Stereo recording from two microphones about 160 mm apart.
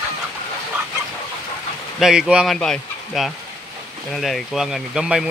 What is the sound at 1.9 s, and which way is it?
Speech, 5° right (ahead or behind).